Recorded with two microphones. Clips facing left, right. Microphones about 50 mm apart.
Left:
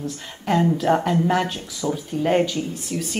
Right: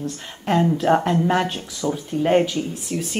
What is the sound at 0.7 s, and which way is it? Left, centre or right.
Speech, centre.